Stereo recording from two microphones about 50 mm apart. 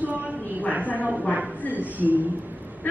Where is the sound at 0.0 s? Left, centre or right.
Right.